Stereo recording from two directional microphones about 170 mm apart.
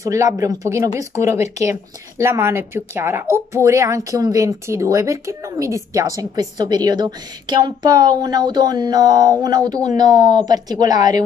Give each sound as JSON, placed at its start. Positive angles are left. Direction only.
{"t": 0.0, "sound": "speech", "side_deg": -20}